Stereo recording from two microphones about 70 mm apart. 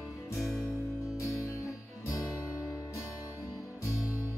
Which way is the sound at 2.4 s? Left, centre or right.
Left.